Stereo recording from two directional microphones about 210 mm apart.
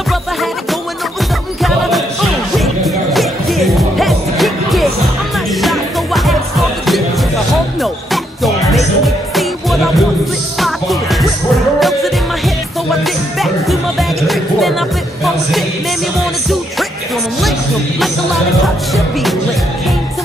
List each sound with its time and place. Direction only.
1.6 s music: centre (ahead or behind)
7.8 s music: centre (ahead or behind)